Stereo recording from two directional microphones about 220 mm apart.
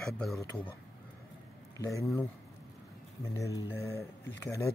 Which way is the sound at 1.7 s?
15° left (ahead or behind).